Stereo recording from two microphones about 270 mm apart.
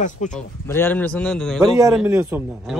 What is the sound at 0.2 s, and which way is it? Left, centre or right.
Speech, left.